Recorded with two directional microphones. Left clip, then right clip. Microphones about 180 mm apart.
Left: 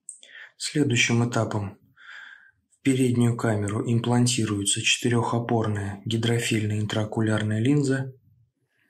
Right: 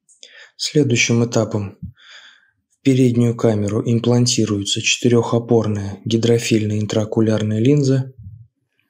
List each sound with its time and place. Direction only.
0.2 s speech: 20° right (ahead or behind)